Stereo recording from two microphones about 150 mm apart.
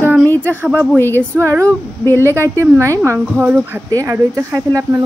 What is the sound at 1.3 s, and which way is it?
Speech, 15° right (ahead or behind).